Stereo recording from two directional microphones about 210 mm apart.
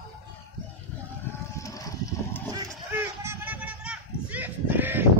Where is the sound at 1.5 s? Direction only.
15° left (ahead or behind).